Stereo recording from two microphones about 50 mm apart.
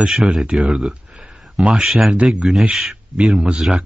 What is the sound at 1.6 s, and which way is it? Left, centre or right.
Speech, right.